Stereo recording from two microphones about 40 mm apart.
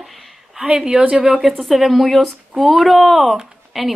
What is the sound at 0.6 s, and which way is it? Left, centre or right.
Speech, centre.